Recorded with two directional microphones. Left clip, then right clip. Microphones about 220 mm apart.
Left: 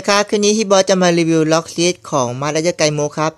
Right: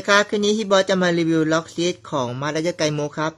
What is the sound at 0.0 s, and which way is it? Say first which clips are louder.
Speech: left 3 dB; 20° left (ahead or behind).